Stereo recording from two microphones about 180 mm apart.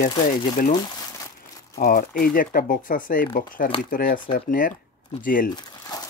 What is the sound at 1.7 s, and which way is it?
Speech, 50° left (ahead or behind).